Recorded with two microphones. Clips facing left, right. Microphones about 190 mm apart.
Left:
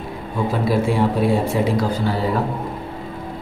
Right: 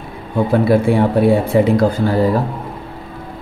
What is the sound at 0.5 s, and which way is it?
Speech, 60° right (ahead or behind).